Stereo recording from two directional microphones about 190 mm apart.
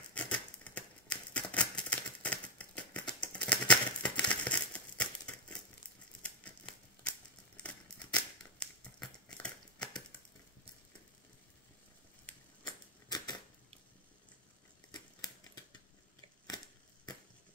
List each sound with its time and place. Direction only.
0.1 s scissors: 5° left (ahead or behind)
8.5 s scissors: 5° left (ahead or behind)
12.6 s typewriter: 20° left (ahead or behind)
14.9 s scissors: 20° left (ahead or behind)
16.4 s a sound: 20° left (ahead or behind)